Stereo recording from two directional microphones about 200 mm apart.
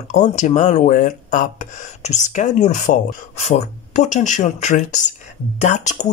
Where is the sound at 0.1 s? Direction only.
40° left (ahead or behind).